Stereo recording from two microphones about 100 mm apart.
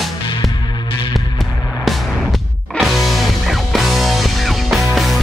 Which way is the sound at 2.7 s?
Centre (ahead or behind).